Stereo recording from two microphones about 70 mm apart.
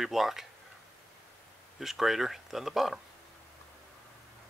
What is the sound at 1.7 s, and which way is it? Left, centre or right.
Speech, centre.